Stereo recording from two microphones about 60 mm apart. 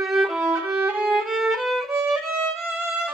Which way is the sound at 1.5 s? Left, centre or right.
Centre.